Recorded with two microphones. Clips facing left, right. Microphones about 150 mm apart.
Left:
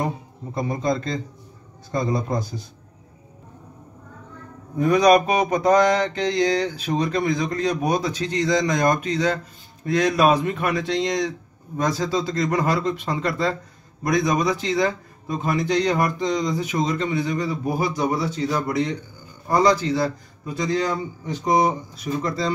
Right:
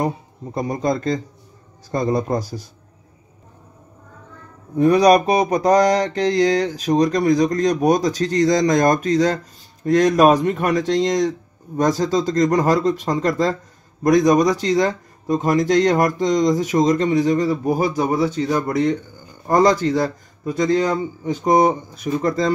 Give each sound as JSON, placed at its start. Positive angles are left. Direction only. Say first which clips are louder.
{"t": 0.6, "sound": "speech", "louder": "right 2 dB", "side_deg": -45}
{"t": 4.7, "sound": "mantra", "louder": "right 3 dB", "side_deg": -35}
{"t": 9.8, "sound": "speech", "louder": "right 5 dB", "side_deg": -45}
{"t": 14.0, "sound": "mantra", "louder": "right 7 dB", "side_deg": -45}
{"t": 15.8, "sound": "speech", "louder": "right 5 dB", "side_deg": -45}